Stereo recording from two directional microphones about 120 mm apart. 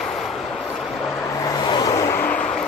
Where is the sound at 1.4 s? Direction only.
35° left (ahead or behind).